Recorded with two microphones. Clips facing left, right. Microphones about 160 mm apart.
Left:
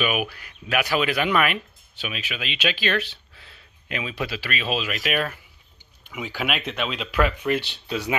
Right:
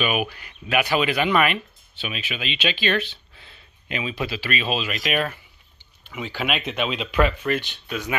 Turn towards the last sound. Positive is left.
turn(degrees=20)  # may be behind; listen again after turning